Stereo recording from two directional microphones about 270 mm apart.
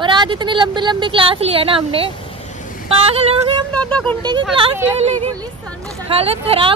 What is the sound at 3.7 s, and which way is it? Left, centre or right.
Speech, centre.